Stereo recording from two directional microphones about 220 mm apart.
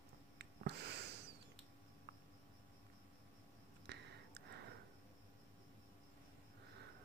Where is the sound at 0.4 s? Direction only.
50° right (ahead or behind).